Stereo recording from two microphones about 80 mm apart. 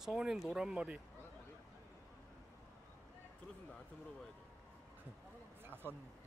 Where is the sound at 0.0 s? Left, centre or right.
Centre.